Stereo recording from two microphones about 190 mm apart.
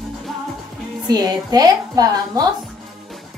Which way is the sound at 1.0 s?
20° right (ahead or behind).